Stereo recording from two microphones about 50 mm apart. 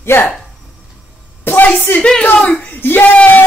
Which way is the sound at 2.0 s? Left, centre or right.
Centre.